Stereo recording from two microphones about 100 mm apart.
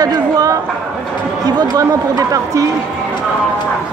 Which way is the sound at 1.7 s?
35° right (ahead or behind).